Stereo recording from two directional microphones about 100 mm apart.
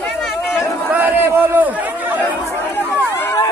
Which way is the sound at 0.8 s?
20° right (ahead or behind).